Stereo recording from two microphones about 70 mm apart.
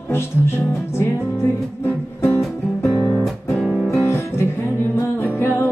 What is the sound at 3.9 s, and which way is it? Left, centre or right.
Music, left.